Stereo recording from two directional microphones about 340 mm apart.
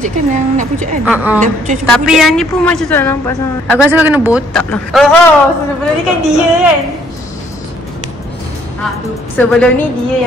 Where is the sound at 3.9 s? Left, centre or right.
Centre.